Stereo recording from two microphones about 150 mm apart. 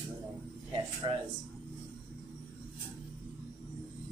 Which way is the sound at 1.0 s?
30° right (ahead or behind).